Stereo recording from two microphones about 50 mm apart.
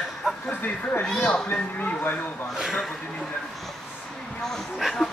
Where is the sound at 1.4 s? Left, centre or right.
Left.